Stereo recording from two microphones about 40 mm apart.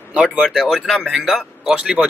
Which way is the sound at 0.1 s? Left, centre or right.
Right.